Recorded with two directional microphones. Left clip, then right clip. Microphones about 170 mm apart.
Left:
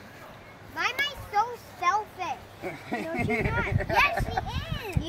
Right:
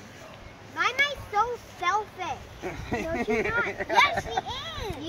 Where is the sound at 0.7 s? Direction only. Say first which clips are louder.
Right 3 dB; 55° left (ahead or behind).